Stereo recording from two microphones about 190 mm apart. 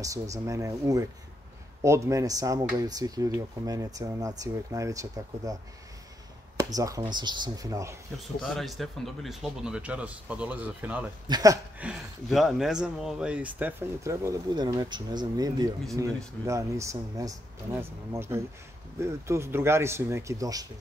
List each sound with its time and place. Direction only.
0.0 s speech: 15° right (ahead or behind)
6.6 s speech: 20° right (ahead or behind)
8.4 s speech: centre (ahead or behind)
11.2 s speech: 20° right (ahead or behind)
11.8 s speech: centre (ahead or behind); by 20.6 s 20° right (ahead or behind)